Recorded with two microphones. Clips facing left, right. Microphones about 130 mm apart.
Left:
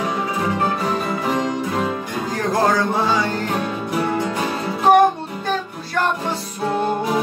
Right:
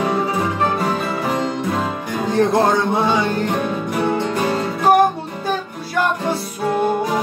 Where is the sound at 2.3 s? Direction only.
25° right (ahead or behind).